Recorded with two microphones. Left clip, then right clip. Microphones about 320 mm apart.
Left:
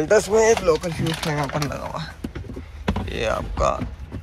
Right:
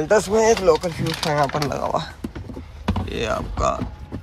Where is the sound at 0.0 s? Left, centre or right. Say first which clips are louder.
Even; centre.